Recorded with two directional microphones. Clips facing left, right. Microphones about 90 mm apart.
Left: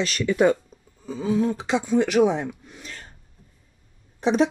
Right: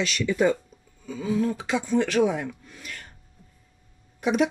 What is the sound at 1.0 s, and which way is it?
Speech, 30° left (ahead or behind).